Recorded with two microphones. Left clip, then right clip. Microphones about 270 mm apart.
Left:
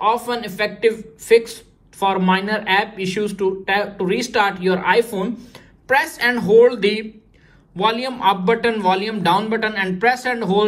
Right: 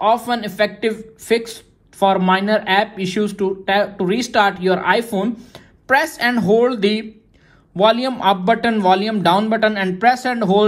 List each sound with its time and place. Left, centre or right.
0.0 s a woman's voice: right